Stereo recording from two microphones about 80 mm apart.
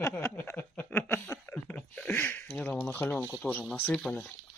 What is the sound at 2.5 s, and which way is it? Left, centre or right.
Speech, centre.